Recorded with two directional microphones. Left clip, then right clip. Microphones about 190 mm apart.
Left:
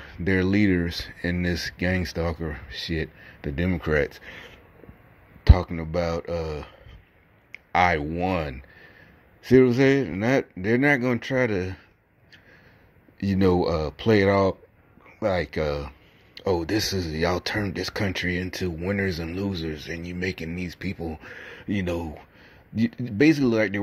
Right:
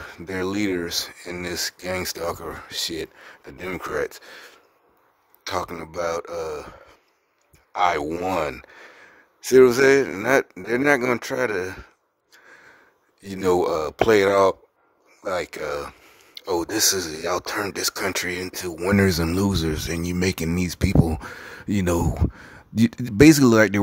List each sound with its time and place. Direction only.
0.4 s speech: 25° right (ahead or behind)
6.0 s speech: 25° right (ahead or behind)
7.8 s speech: 25° right (ahead or behind)
13.3 s speech: 30° right (ahead or behind)